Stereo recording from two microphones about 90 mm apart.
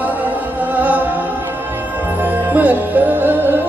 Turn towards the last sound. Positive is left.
turn(degrees=-25)  # may be behind; listen again after turning